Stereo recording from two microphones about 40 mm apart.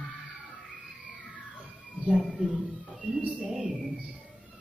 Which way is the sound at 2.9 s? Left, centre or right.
Centre.